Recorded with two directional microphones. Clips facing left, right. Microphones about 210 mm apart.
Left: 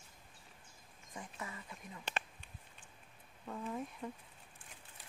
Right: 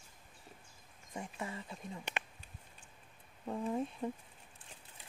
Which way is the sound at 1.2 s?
25° right (ahead or behind).